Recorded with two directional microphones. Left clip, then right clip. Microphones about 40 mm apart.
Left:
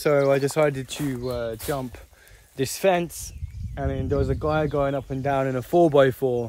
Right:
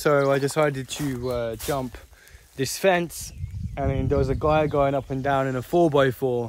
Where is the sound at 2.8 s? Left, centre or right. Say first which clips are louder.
Even; right.